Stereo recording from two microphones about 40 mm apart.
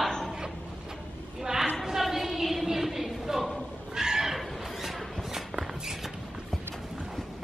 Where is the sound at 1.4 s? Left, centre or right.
Centre.